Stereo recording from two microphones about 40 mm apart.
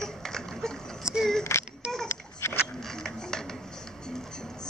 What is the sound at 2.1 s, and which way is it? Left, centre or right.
Babbling, left.